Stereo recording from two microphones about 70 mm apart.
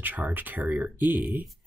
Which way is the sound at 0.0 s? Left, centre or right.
Right.